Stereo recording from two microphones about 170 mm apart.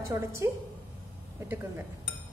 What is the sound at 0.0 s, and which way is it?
Speech, 15° right (ahead or behind).